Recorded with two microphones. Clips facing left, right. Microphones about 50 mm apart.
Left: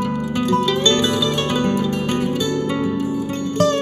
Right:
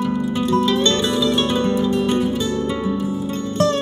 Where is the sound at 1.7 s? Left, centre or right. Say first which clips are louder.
Right 2 dB; left.